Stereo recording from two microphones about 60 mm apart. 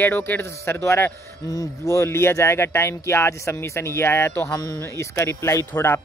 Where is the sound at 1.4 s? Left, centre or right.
Left.